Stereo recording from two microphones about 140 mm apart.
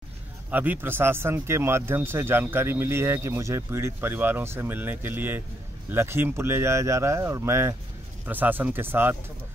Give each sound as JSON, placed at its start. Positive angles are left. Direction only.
{"t": 0.5, "sound": "speech", "side_deg": -15}